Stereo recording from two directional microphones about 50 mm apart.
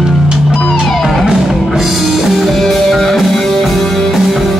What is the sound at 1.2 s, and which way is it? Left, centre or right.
Music, centre.